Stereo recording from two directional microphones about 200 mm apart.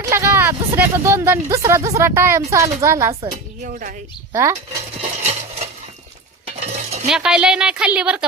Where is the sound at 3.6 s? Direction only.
45° right (ahead or behind).